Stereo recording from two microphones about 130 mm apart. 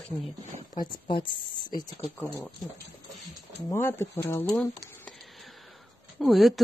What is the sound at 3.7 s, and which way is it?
Speech, 20° left (ahead or behind).